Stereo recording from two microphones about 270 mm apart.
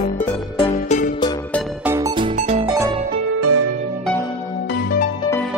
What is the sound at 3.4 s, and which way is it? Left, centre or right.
Music, right.